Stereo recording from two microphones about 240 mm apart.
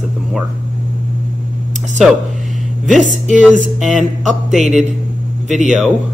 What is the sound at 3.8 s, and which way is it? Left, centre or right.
Speech, centre.